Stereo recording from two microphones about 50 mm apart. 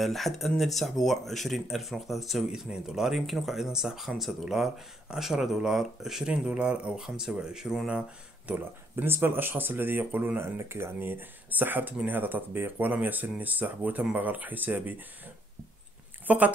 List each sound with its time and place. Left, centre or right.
0.0 s speech: centre
6.4 s speech: centre
8.5 s speech: right
8.9 s speech: right
10.4 s speech: right
16.3 s speech: right